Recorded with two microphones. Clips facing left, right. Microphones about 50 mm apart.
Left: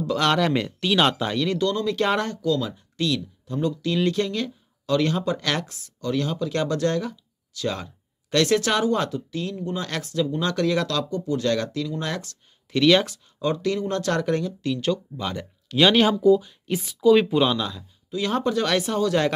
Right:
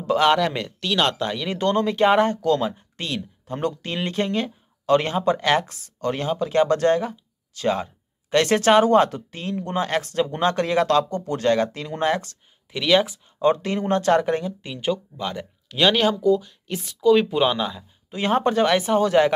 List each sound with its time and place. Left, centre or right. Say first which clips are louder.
0.4 s speech: left 1 dB; centre
1.6 s speech: right 3 dB; right
2.0 s speech: right 6 dB; right
2.3 s speech: right 3 dB; right
5.7 s speech: right 2 dB; right
6.2 s speech: right 5 dB; right
10.0 s speech: right 3 dB; right
11.1 s speech: right 2 dB; right
11.5 s speech: right 3 dB; right
12.7 s speech: left 1 dB; centre
13.4 s speech: right 3 dB; right; by 15.0 s centre
15.1 s speech: right 1 dB; centre
17.5 s speech: right 2 dB; centre
18.1 s speech: right 3 dB; right